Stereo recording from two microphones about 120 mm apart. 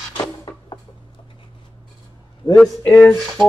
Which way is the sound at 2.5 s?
5° left (ahead or behind).